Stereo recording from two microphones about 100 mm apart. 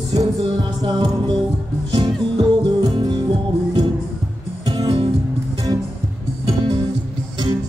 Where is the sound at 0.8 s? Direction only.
50° right (ahead or behind).